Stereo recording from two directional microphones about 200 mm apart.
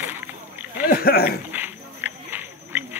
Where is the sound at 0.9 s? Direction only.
50° left (ahead or behind).